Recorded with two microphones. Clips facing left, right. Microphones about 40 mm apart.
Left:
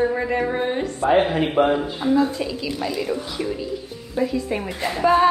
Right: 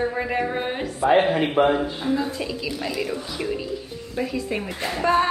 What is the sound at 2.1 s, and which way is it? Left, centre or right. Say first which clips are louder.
Speech: left 5 dB; centre.